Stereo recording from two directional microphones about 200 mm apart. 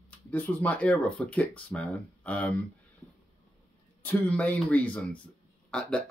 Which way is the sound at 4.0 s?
10° left (ahead or behind).